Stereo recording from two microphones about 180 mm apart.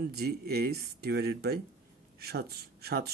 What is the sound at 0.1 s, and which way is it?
A man's voice, 60° right (ahead or behind).